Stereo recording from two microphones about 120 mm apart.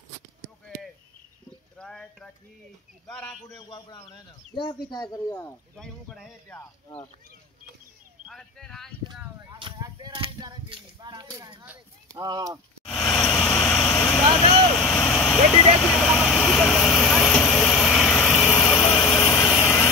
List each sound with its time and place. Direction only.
1.8 s clip-clop: 5° left (ahead or behind)
3.1 s a man's voice: 10° left (ahead or behind)
3.5 s speech: 35° left (ahead or behind)
6.0 s speech: 5° right (ahead or behind)
8.3 s speech: 5° left (ahead or behind)
9.5 s a sound: 40° right (ahead or behind)
12.1 s speech: 35° right (ahead or behind)
12.8 s vehicle: 5° left (ahead or behind)
19.1 s vehicle: 25° left (ahead or behind)